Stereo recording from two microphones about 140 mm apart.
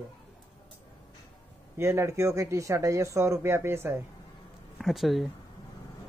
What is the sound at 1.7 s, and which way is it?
Speech, 20° right (ahead or behind).